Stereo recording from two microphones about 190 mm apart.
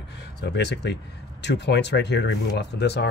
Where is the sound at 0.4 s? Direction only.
65° left (ahead or behind).